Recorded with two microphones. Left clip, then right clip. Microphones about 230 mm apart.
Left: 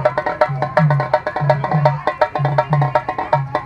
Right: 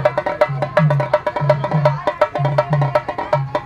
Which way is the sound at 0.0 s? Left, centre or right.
Right.